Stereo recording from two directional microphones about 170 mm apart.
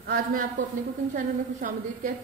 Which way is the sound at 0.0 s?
65° right (ahead or behind).